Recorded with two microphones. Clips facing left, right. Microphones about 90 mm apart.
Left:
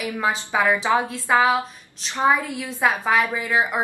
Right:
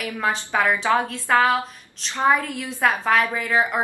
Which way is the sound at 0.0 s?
10° left (ahead or behind).